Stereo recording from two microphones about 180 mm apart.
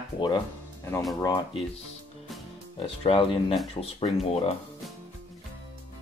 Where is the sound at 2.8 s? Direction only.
30° left (ahead or behind).